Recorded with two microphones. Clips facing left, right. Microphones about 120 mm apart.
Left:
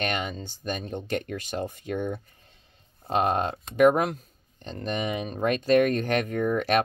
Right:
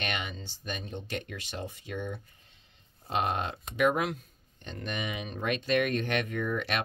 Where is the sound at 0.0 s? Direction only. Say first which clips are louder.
Left 6 dB; 45° left (ahead or behind).